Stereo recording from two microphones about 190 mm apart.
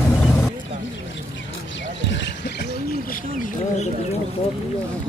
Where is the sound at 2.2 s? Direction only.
60° left (ahead or behind).